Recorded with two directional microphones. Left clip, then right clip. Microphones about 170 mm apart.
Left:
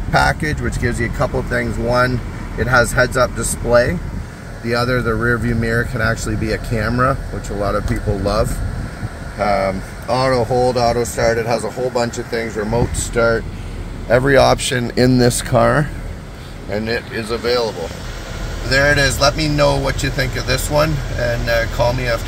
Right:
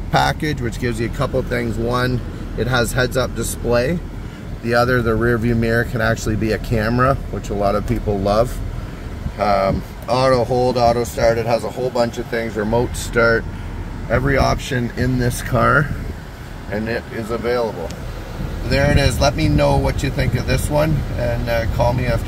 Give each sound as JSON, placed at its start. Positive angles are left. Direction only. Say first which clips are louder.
{"t": 0.1, "sound": "speech", "louder": "left 2 dB", "side_deg": 0}
{"t": 4.6, "sound": "speech", "louder": "right 2 dB", "side_deg": -10}
{"t": 9.4, "sound": "speech", "louder": "even", "side_deg": -15}
{"t": 12.7, "sound": "speech", "louder": "right 1 dB", "side_deg": -10}
{"t": 14.1, "sound": "speech", "louder": "left 6 dB", "side_deg": 30}
{"t": 15.5, "sound": "speech", "louder": "even", "side_deg": 20}
{"t": 16.9, "sound": "speech", "louder": "left 3 dB", "side_deg": -5}
{"t": 18.8, "sound": "speech", "louder": "left 4 dB", "side_deg": -5}